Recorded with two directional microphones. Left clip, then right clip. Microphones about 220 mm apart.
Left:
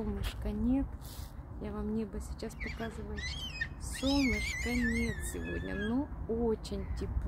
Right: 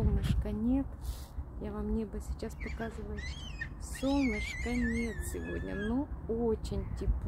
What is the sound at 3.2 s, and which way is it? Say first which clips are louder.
Speech: left 4 dB; 30° left (ahead or behind).